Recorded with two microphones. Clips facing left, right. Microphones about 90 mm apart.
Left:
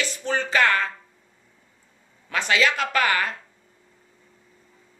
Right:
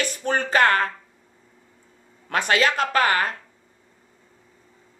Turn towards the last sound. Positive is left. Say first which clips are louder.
# right 2 dB
turn(degrees=-40)  # may be behind; listen again after turning